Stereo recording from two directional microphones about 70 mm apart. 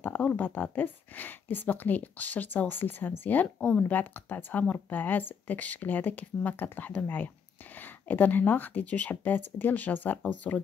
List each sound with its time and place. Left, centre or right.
0.0 s speech: left